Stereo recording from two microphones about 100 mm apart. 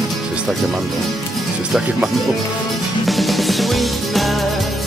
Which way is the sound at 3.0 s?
Centre (ahead or behind).